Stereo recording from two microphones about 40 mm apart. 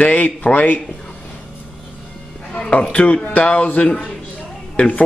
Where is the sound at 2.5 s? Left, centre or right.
Left.